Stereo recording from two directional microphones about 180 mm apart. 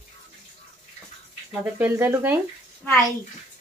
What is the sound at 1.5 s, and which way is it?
Speech, 10° right (ahead or behind).